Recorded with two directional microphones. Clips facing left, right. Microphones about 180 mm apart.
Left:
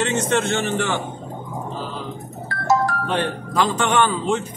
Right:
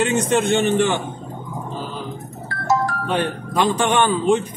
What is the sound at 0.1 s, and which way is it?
Speech, 15° right (ahead or behind).